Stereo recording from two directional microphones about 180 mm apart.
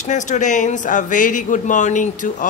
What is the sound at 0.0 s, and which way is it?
Speech, 40° left (ahead or behind).